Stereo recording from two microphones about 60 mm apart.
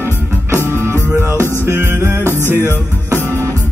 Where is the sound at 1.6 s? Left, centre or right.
Right.